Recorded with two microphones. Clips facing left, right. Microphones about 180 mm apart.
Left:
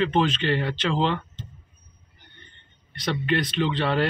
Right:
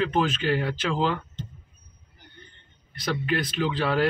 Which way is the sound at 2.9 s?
Centre (ahead or behind).